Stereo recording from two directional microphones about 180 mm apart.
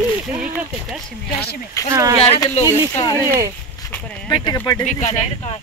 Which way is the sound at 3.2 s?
20° right (ahead or behind).